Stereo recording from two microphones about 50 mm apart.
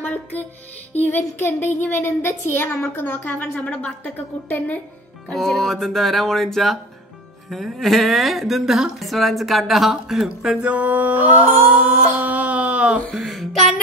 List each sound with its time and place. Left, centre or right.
0.0 s music: left
1.4 s a child's voice: left
4.5 s a child's voice: left
5.3 s speech: centre
10.7 s mantra: right
11.7 s a sound: right
13.1 s a sound: centre